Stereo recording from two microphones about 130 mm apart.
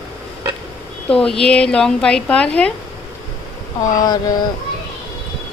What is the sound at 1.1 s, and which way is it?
Speech, 5° left (ahead or behind).